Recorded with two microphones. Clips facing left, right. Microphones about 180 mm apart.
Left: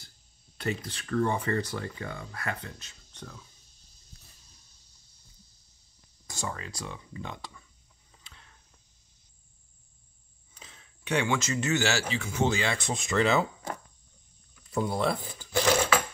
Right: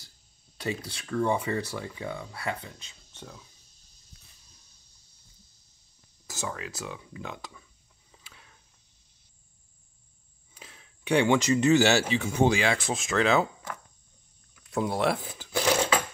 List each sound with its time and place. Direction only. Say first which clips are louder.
0.8 s speech: right 1 dB; 10° right (ahead or behind)
6.2 s speech: right 1 dB; 5° right (ahead or behind)
8.2 s cricket: even; 5° right (ahead or behind)
10.5 s a sound: right 2 dB; 10° right (ahead or behind)
11.3 s speech: right 7 dB; 15° right (ahead or behind)
12.7 s speech: right 1 dB; 5° right (ahead or behind)
14.7 s speech: right 1 dB; centre (ahead or behind)
15.5 s mechanisms: even; 15° right (ahead or behind)